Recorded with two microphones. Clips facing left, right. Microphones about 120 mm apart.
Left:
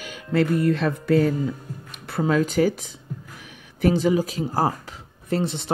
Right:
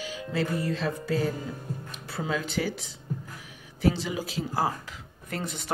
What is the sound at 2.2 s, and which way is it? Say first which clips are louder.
Speech: left 10 dB; 45° left (ahead or behind).